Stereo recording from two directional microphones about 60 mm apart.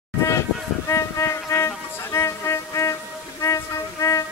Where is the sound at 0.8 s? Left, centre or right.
Left.